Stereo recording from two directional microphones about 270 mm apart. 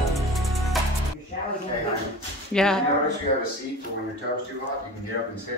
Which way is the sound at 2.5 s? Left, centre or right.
Centre.